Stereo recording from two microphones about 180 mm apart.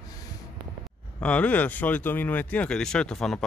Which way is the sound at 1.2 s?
5° left (ahead or behind).